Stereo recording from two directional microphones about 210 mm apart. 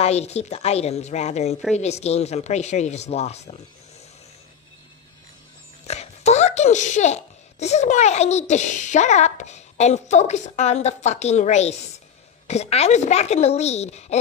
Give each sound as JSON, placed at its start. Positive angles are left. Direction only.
{"t": 0.0, "sound": "speech", "side_deg": 30}
{"t": 5.9, "sound": "speech", "side_deg": 30}